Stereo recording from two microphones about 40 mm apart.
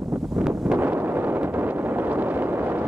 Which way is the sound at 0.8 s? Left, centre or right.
Right.